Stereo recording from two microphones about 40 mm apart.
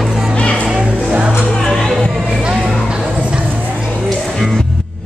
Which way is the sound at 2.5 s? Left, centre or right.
Centre.